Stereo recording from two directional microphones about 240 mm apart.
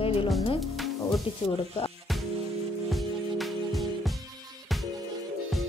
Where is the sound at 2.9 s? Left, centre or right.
Centre.